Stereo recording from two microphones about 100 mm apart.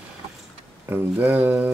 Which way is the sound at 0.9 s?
20° right (ahead or behind).